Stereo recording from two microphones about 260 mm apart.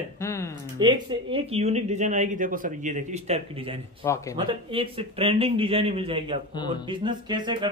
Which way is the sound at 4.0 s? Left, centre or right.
Centre.